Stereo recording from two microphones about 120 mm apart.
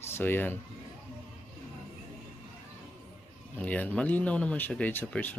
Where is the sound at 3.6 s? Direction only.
10° left (ahead or behind).